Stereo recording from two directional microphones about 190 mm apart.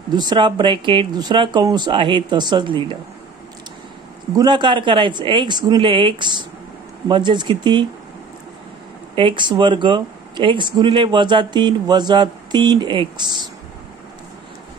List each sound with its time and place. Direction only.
0.1 s speech: 20° right (ahead or behind)
4.4 s speech: 25° right (ahead or behind)
9.1 s speech: 25° right (ahead or behind)